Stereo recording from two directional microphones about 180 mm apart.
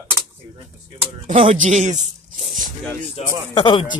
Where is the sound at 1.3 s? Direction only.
30° right (ahead or behind).